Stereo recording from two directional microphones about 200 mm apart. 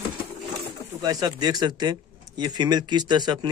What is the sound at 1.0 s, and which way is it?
Speech, 20° right (ahead or behind).